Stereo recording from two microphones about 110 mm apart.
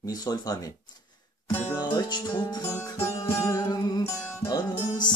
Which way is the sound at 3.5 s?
30° left (ahead or behind).